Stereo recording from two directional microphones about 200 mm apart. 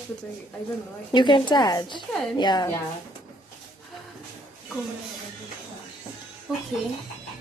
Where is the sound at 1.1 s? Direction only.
25° left (ahead or behind).